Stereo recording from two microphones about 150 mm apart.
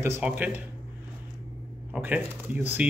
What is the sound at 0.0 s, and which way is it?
Speech, 15° right (ahead or behind).